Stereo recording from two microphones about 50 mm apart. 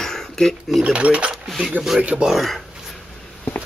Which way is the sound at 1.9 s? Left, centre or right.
Centre.